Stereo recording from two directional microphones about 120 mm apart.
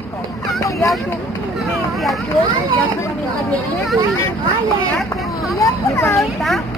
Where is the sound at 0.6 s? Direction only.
30° left (ahead or behind).